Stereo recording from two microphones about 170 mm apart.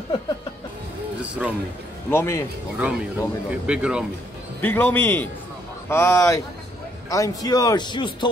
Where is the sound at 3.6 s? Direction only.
5° right (ahead or behind).